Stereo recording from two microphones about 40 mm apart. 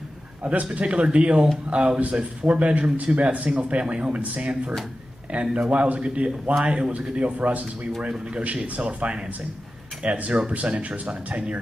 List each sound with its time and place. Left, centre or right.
0.4 s speech: right